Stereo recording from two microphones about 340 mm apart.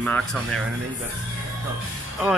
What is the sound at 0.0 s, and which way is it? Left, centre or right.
Speech, centre.